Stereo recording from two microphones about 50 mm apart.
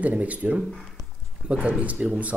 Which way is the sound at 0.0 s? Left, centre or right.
Right.